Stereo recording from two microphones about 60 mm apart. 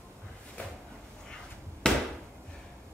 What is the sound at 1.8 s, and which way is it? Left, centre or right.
Chop, centre.